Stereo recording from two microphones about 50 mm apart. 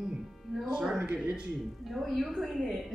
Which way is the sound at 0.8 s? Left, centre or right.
Centre.